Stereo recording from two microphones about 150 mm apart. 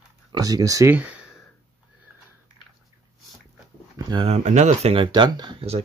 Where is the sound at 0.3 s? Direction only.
25° right (ahead or behind).